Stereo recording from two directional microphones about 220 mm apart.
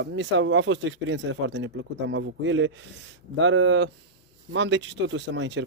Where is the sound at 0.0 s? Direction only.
60° right (ahead or behind).